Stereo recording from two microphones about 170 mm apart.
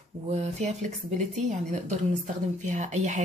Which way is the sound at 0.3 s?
40° right (ahead or behind).